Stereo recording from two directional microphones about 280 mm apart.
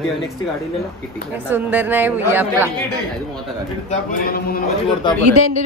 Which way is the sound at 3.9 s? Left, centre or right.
Left.